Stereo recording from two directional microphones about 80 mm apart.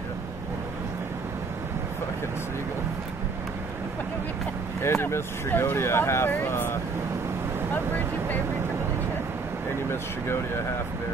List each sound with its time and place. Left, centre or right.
4.8 s speech: left
9.8 s speech: left